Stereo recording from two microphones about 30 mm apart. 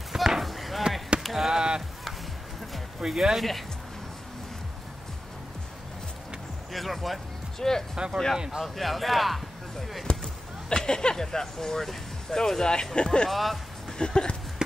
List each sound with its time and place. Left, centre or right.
0.1 s chop: centre
0.4 s chop: centre
1.5 s a sound: right
3.1 s speech: centre
6.7 s speech: centre
7.5 s speech: centre
7.9 s speech: right
8.6 s speech: centre
10.2 s speech: left
12.9 s speech: left
13.3 s music: centre
13.9 s speech: left